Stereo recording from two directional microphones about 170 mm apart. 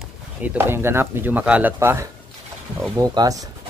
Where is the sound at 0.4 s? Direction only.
15° right (ahead or behind).